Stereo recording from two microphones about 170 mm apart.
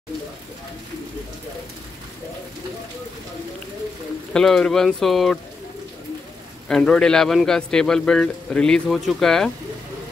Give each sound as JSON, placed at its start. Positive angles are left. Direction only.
{"t": 4.3, "sound": "a man's voice", "side_deg": 5}
{"t": 6.7, "sound": "a man's voice", "side_deg": 5}